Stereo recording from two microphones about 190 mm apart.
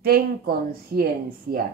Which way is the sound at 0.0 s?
50° right (ahead or behind).